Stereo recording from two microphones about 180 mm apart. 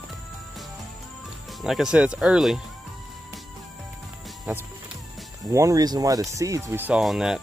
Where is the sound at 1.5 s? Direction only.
Centre (ahead or behind).